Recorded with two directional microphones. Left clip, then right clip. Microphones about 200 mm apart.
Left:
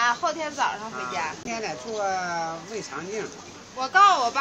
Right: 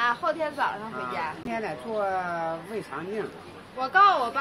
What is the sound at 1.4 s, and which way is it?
Speech, 15° right (ahead or behind).